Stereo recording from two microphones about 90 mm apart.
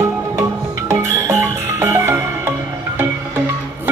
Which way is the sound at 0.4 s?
30° right (ahead or behind).